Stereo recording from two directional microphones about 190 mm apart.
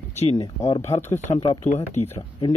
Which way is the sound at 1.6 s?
35° left (ahead or behind).